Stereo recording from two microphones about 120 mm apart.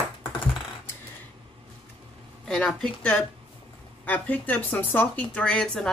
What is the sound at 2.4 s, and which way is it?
Speech, 5° left (ahead or behind).